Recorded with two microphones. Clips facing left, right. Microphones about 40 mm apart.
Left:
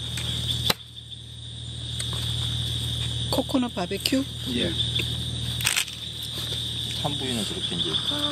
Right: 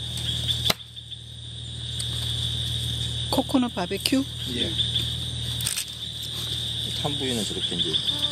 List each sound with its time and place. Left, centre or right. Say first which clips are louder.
0.3 s chop: right 1 dB; centre
3.3 s speech: right 2 dB; centre
5.6 s a sound: left 6 dB; left
6.3 s a sound: even; centre
7.2 s speech: right 1 dB; centre
7.5 s speech: right 1 dB; centre
7.9 s speech: right 1 dB; centre